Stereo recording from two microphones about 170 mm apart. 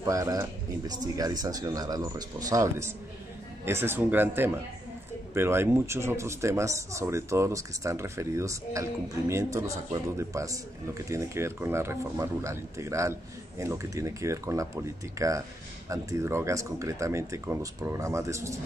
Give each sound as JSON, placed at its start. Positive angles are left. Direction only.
{"t": 0.0, "sound": "speech", "side_deg": -20}